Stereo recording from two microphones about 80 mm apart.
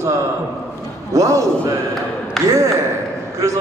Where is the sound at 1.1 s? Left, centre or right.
Right.